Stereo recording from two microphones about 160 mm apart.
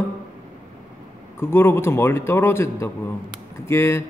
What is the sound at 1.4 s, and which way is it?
A man's voice, 15° left (ahead or behind).